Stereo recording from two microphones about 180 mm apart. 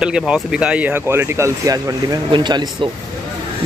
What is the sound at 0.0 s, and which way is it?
Speech, 5° right (ahead or behind).